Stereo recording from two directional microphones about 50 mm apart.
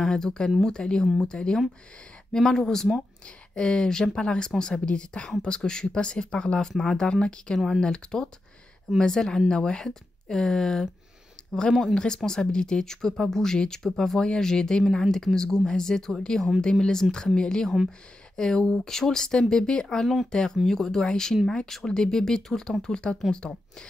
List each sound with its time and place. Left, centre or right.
0.0 s speech: centre